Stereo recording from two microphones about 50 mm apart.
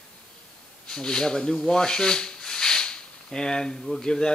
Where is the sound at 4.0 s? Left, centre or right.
Centre.